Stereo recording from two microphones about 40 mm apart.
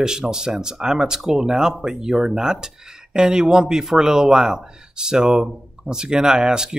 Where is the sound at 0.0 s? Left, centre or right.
Centre.